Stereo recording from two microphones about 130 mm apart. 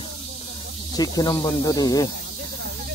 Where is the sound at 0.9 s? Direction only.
30° left (ahead or behind).